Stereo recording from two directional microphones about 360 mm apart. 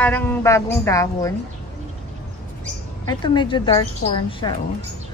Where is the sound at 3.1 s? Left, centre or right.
Centre.